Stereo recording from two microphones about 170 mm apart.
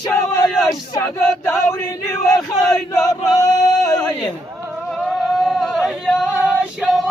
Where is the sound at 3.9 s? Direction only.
5° left (ahead or behind).